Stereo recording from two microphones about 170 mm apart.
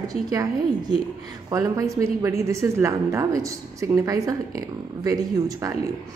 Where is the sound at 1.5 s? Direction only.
20° right (ahead or behind).